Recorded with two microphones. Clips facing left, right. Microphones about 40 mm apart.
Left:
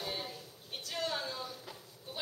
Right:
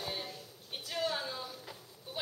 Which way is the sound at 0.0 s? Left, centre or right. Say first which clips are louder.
Even; centre.